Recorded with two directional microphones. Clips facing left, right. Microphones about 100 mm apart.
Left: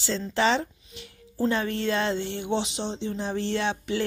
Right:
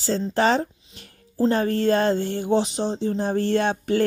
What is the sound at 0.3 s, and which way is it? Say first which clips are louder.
A woman's voice: right 3 dB; 45° right (ahead or behind).